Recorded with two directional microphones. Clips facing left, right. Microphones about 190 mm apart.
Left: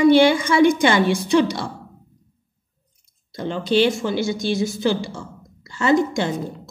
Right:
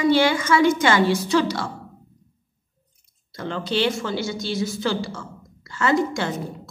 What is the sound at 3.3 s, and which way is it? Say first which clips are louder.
A woman's voice: left 5 dB; 20° left (ahead or behind).